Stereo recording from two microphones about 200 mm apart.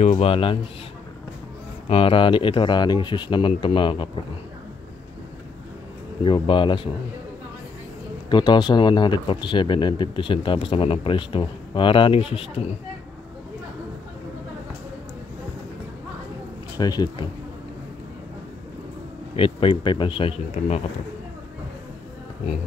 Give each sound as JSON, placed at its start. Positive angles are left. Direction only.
{"t": 0.0, "sound": "a man's voice", "side_deg": 30}
{"t": 1.9, "sound": "a man's voice", "side_deg": 30}
{"t": 6.2, "sound": "a man's voice", "side_deg": 25}
{"t": 8.3, "sound": "a man's voice", "side_deg": 20}
{"t": 16.7, "sound": "a man's voice", "side_deg": 20}
{"t": 19.3, "sound": "a man's voice", "side_deg": 25}